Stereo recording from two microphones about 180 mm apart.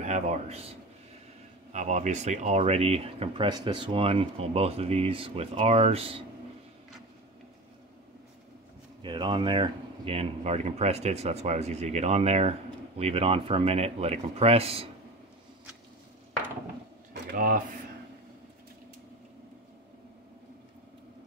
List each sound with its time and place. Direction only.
0.0 s speech: 40° right (ahead or behind)
9.0 s speech: 25° right (ahead or behind)
17.1 s a sound: 50° right (ahead or behind)